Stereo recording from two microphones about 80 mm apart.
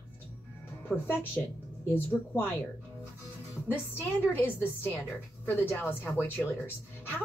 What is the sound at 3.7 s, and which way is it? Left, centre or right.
A woman's voice, left.